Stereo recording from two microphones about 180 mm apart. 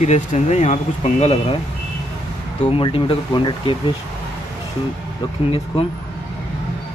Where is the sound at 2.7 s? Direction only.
30° left (ahead or behind).